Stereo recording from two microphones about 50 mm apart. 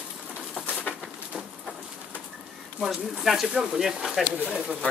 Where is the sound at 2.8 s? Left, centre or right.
Centre.